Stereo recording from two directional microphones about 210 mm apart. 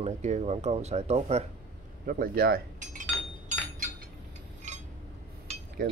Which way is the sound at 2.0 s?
45° right (ahead or behind).